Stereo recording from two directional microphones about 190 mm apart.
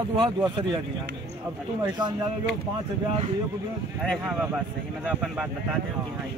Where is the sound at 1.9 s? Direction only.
25° right (ahead or behind).